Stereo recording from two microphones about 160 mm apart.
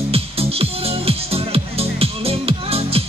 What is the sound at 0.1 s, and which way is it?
Music, 35° right (ahead or behind).